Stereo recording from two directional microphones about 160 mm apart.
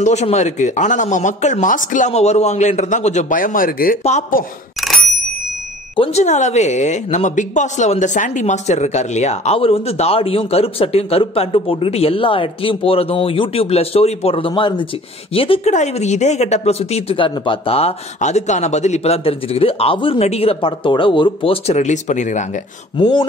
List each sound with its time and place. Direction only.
0.0 s speech: 45° left (ahead or behind); by 4.0 s 60° left (ahead or behind)
4.0 s speech: 45° left (ahead or behind)
4.7 s bicycle bell: centre (ahead or behind)
5.9 s a woman's voice: 45° left (ahead or behind)
15.7 s a woman's voice: 45° left (ahead or behind)